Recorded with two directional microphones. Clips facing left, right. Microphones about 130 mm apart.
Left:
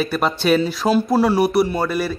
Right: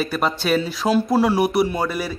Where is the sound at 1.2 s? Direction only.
10° right (ahead or behind).